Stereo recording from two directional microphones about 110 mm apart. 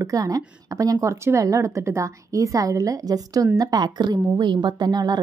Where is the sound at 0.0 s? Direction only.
35° right (ahead or behind).